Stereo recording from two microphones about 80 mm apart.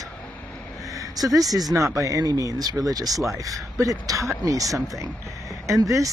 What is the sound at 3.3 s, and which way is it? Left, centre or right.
Speech, right.